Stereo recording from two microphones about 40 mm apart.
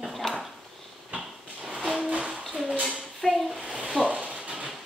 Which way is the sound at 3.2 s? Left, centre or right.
Centre.